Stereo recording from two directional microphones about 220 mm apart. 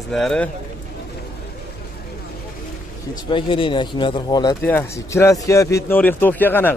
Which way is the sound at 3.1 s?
25° left (ahead or behind).